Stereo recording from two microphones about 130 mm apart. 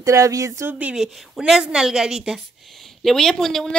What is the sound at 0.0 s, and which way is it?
Speech, 25° right (ahead or behind).